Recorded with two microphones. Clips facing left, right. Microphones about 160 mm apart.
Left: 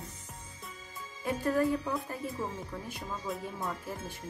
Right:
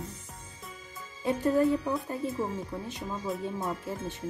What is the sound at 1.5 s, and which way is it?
Speech, 25° right (ahead or behind).